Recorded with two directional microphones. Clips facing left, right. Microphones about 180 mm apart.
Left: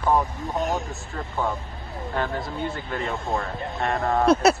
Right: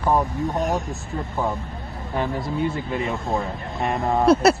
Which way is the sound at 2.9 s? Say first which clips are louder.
Right 3 dB; 5° right (ahead or behind).